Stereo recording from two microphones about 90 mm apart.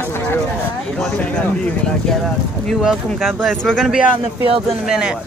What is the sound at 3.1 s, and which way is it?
Speech, 5° left (ahead or behind).